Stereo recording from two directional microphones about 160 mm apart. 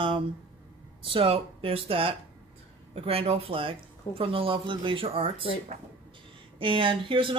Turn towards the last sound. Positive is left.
turn(degrees=-30)  # may be behind; listen again after turning